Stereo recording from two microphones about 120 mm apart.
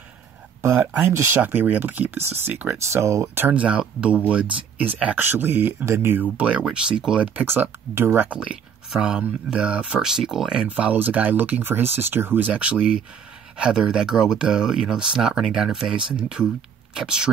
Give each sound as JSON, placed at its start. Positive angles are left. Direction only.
{"t": 0.6, "sound": "speech", "side_deg": -20}